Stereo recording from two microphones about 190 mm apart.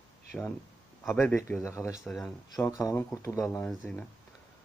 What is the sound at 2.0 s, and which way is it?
Speech, centre (ahead or behind).